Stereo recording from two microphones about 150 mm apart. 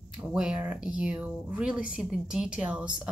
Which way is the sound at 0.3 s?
5° right (ahead or behind).